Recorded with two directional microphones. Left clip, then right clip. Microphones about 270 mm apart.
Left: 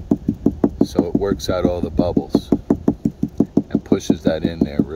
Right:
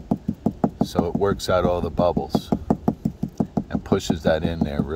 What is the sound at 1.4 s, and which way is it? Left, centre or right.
Speech, right.